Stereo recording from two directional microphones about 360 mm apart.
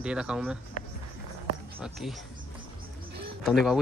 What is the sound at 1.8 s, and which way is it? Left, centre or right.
Speech, centre.